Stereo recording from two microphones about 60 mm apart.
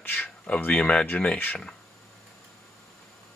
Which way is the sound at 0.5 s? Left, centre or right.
Left.